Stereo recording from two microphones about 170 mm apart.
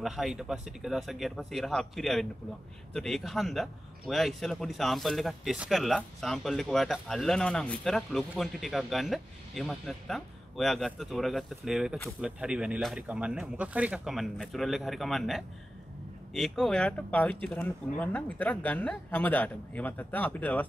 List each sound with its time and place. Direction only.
0.0 s speech: centre (ahead or behind)